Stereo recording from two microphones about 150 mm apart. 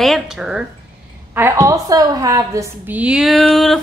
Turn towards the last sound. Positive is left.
turn(degrees=0)  # may be behind; listen again after turning